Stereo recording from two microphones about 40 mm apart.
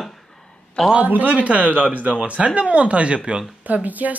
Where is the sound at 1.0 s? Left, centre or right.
Right.